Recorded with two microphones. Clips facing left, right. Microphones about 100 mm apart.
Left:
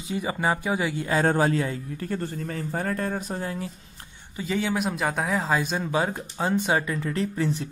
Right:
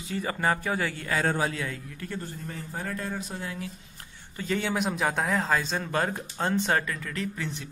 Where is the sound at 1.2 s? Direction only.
40° left (ahead or behind).